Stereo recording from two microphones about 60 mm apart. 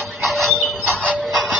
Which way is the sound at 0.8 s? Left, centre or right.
Right.